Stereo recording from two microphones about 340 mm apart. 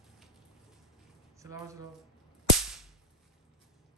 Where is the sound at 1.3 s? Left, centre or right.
Centre.